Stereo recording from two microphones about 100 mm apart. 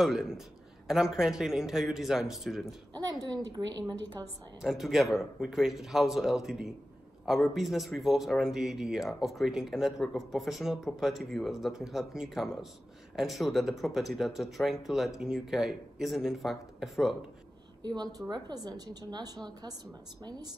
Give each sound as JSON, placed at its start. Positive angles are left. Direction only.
{"t": 0.0, "sound": "speech", "side_deg": 0}
{"t": 3.1, "sound": "a woman's voice", "side_deg": -45}
{"t": 4.6, "sound": "speech", "side_deg": 0}
{"t": 17.8, "sound": "a woman's voice", "side_deg": -45}